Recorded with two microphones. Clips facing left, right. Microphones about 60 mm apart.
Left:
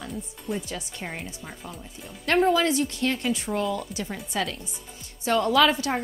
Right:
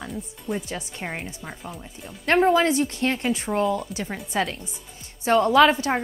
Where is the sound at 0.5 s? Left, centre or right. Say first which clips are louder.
Right 2 dB; right.